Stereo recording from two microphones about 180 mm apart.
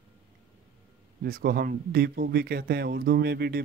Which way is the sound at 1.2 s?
55° right (ahead or behind).